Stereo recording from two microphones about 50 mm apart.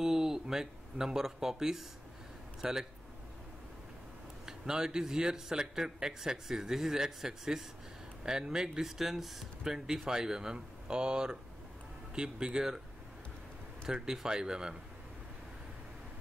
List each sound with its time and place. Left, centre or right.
0.0 s a man's voice: centre
4.5 s a man's voice: centre
13.8 s a man's voice: centre